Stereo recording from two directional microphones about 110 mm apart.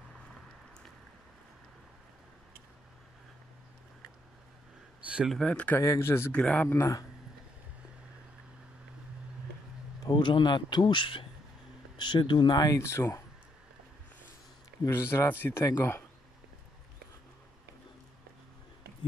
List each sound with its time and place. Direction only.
5.0 s a sound: 10° right (ahead or behind)
5.3 s speech: 10° left (ahead or behind)
5.8 s a man's voice: 25° left (ahead or behind)
6.3 s speech: 10° left (ahead or behind)
10.0 s speech: 45° left (ahead or behind); by 13.2 s 25° left (ahead or behind)
14.9 s a man's voice: 20° left (ahead or behind)